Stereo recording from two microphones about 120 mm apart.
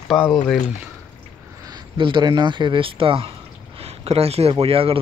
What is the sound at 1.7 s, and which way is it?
Speech, 40° right (ahead or behind).